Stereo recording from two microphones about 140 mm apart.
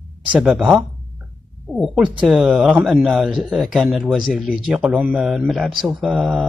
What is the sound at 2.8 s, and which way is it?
Speech, 15° right (ahead or behind).